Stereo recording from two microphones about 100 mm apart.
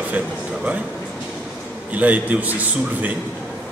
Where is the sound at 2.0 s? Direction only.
15° right (ahead or behind).